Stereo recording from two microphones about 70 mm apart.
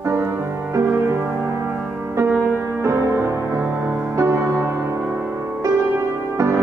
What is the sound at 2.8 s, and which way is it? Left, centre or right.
Music, right.